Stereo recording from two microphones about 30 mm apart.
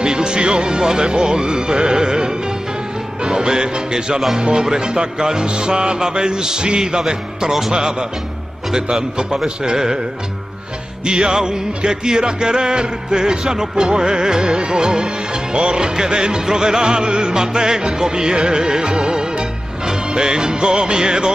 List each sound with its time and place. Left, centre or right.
0.0 s speech: right
4.4 s music: right
9.6 s music: right
11.1 s music: right